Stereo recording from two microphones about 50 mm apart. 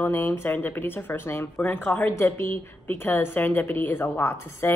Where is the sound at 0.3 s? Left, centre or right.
Left.